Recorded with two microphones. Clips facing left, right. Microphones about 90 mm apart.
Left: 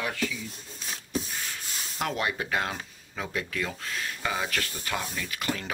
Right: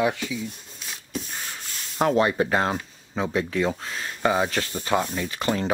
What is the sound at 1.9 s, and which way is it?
Speech, 30° right (ahead or behind).